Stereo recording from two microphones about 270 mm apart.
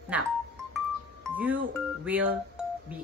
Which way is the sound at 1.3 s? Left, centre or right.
Centre.